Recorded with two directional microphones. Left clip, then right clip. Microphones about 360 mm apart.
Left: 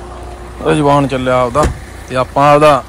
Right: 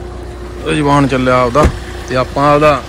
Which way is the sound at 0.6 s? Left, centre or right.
Centre.